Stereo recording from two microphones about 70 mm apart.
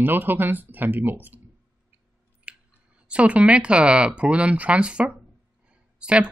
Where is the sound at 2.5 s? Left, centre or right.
Centre.